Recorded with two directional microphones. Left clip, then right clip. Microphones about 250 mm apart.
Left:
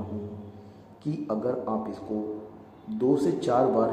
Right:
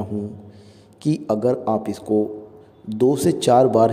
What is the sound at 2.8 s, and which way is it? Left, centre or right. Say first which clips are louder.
A man's voice: right 6 dB; right.